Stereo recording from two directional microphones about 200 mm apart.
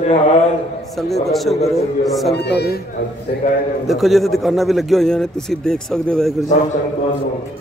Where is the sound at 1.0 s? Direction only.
Centre (ahead or behind).